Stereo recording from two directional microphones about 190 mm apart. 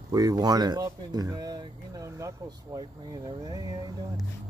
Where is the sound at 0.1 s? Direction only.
20° right (ahead or behind).